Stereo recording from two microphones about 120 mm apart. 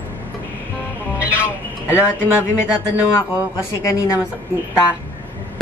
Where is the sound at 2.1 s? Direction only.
20° left (ahead or behind).